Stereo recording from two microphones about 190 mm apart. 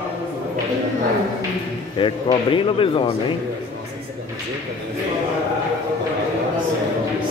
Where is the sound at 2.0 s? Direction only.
25° left (ahead or behind).